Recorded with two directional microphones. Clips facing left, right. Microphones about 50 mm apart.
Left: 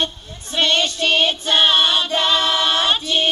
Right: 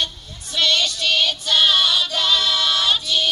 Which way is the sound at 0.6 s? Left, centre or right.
Left.